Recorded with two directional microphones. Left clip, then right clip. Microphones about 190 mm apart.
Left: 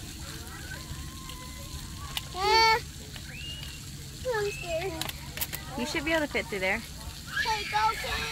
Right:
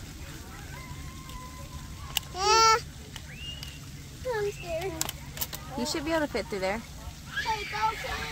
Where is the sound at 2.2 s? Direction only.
45° right (ahead or behind).